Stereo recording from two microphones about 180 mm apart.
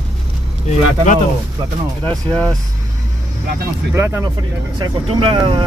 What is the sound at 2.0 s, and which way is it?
Speech, 5° left (ahead or behind).